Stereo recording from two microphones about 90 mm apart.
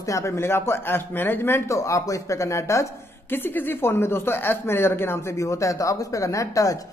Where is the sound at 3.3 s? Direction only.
25° left (ahead or behind).